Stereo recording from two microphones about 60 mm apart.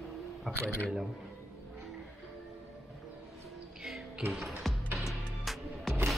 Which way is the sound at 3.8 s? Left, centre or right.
Centre.